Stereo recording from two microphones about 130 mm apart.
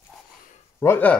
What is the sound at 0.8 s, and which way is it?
Speech, 15° left (ahead or behind).